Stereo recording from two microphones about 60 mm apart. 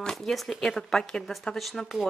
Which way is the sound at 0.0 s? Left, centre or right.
Centre.